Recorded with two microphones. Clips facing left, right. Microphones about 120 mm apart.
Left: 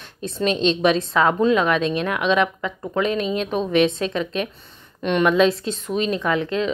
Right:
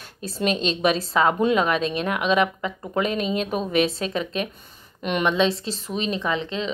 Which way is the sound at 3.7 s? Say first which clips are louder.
Left 5 dB; 40° right (ahead or behind).